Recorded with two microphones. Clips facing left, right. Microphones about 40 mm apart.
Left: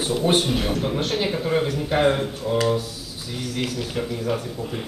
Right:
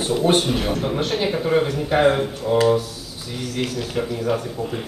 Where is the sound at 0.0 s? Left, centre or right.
Centre.